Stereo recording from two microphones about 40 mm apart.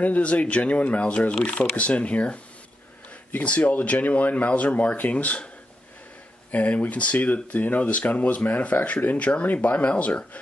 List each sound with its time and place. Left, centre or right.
0.0 s speech: left
6.5 s speech: left